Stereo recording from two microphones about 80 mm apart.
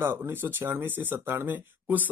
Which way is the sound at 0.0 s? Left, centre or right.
Right.